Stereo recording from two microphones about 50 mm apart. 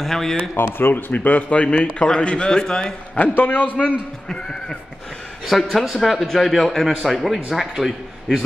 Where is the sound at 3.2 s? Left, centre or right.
Left.